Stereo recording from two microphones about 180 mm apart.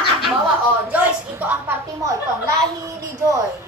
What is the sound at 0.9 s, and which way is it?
A woman's voice, 10° right (ahead or behind).